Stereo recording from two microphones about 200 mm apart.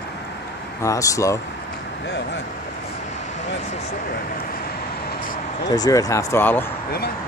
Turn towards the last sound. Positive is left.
turn(degrees=10)  # may be behind; listen again after turning